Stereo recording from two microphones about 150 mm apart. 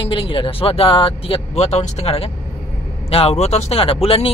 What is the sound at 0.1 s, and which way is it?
Speech, 35° left (ahead or behind).